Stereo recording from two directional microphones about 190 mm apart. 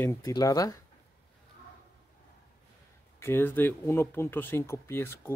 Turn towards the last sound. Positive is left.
turn(degrees=10)  # may be behind; listen again after turning